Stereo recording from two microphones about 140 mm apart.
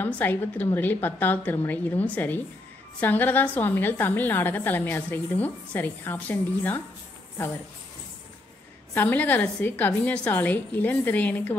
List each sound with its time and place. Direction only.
0.0 s a woman's voice: 15° left (ahead or behind)
8.9 s a woman's voice: 10° left (ahead or behind)